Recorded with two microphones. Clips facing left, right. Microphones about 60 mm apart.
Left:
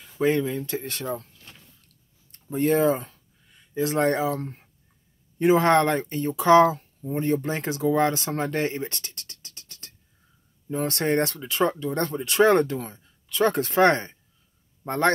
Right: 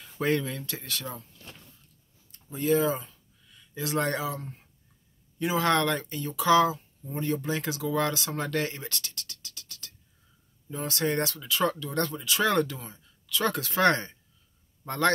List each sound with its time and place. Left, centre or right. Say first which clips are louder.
0.2 s speech: left 5 dB; centre
0.5 s a man's voice: left 7 dB; left
0.7 s speech: left 7 dB; left
2.5 s speech: left 4 dB; left
3.5 s speech: left 5 dB; left
5.4 s a man's voice: left 7 dB; left